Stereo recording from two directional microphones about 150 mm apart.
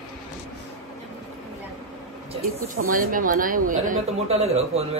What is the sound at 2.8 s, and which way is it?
A woman's voice, 65° right (ahead or behind).